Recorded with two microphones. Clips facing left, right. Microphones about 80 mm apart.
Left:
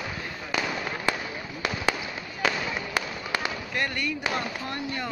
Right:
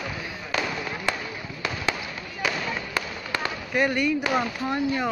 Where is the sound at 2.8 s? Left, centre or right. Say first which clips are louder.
Even; centre.